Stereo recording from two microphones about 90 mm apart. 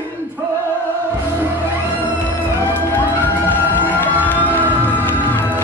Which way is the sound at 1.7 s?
25° left (ahead or behind).